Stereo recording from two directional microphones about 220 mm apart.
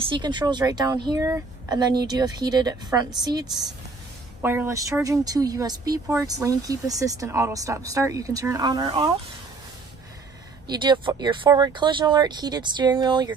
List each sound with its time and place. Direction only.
0.0 s speech: 20° right (ahead or behind)
4.4 s speech: 10° right (ahead or behind)
10.7 s speech: 20° right (ahead or behind)